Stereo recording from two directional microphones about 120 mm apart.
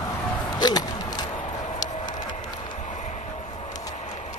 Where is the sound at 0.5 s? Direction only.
35° left (ahead or behind).